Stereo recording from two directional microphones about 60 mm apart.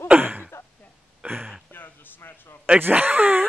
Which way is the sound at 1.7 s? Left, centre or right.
Left.